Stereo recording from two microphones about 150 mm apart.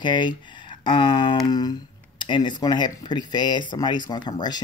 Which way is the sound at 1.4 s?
25° left (ahead or behind).